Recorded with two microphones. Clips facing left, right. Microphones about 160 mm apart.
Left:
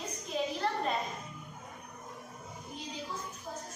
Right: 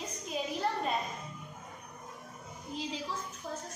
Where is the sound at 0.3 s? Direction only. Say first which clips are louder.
Left 3 dB; 5° right (ahead or behind).